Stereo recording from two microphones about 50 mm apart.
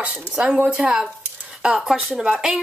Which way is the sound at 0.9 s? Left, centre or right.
Centre.